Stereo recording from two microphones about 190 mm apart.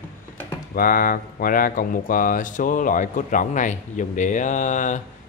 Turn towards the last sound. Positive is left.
turn(degrees=40)  # may be behind; listen again after turning